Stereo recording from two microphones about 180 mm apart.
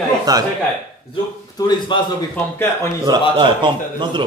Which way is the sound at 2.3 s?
10° left (ahead or behind).